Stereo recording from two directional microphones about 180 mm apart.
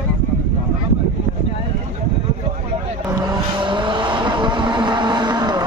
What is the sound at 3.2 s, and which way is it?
Vehicle, 25° right (ahead or behind).